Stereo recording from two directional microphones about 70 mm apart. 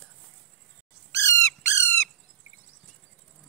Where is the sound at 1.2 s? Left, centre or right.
Left.